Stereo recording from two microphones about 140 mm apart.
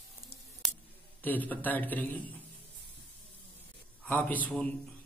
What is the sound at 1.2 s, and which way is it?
A man's voice, 10° left (ahead or behind).